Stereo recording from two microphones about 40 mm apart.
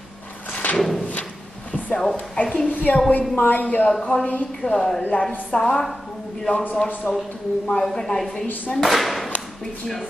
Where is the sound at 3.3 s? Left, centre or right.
Left.